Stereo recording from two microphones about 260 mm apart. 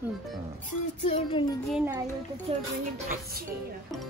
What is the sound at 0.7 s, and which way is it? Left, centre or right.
Speech, left.